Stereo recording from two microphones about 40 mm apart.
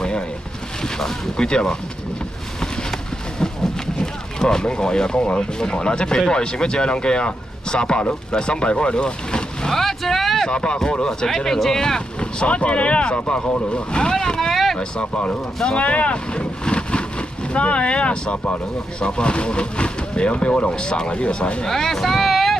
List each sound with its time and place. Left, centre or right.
0.9 s speech: centre
9.8 s speech: centre
10.5 s speech: left
14.5 s boat: centre
14.8 s speech: left
21.6 s a sound: centre